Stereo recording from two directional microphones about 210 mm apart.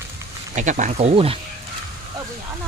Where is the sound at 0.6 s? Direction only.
35° right (ahead or behind).